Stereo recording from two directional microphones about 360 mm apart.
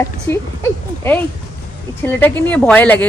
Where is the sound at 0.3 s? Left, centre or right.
Centre.